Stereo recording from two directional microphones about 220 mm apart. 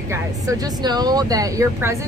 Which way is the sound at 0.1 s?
15° right (ahead or behind).